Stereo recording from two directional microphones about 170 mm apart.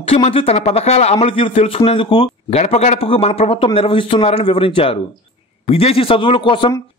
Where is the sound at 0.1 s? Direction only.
35° left (ahead or behind).